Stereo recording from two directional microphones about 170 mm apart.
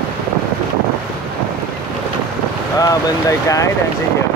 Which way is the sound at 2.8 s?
20° left (ahead or behind).